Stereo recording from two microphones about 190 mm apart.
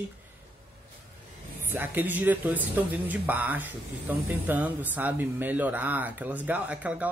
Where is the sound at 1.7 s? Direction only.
10° right (ahead or behind).